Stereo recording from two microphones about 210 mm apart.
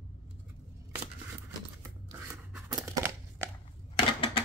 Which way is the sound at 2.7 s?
15° right (ahead or behind).